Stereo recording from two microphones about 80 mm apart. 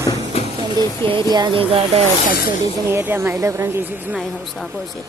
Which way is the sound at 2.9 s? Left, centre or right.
Right.